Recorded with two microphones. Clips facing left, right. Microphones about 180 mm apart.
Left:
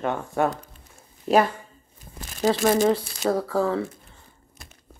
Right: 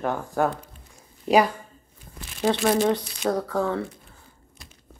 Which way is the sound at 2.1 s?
40° left (ahead or behind).